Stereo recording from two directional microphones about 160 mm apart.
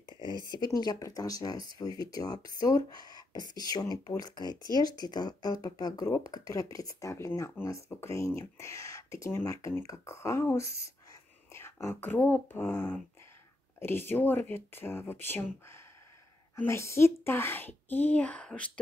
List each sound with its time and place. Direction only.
0.5 s a woman's voice: 25° left (ahead or behind); by 18.7 s 5° left (ahead or behind)